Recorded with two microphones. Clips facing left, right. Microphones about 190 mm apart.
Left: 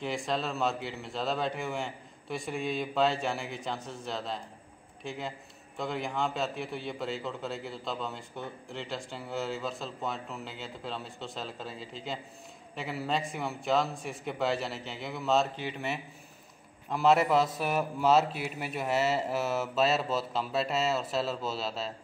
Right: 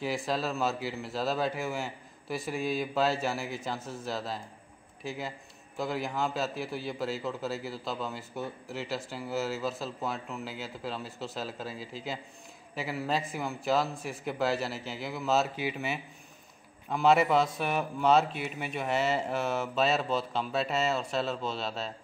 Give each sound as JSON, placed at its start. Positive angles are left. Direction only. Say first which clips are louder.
{"t": 0.0, "sound": "a man's voice", "louder": "right 1 dB", "side_deg": -5}